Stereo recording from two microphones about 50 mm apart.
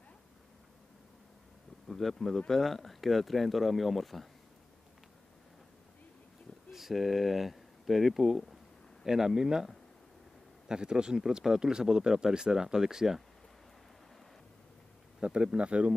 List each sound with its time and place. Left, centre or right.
1.9 s speech: centre
6.7 s speech: centre
15.1 s speech: centre